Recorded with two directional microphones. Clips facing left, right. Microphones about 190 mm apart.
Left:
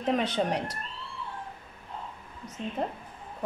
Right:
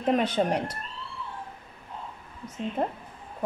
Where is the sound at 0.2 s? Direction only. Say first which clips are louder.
Right 3 dB; 50° right (ahead or behind).